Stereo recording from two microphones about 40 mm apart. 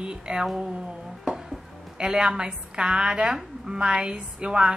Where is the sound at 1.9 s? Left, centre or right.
Right.